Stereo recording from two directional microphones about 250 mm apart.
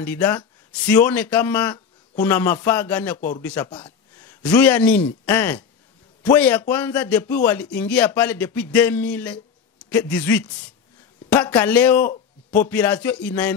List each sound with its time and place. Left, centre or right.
0.0 s a man's voice: centre